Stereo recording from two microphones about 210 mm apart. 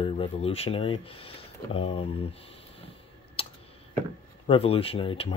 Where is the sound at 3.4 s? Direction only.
25° left (ahead or behind).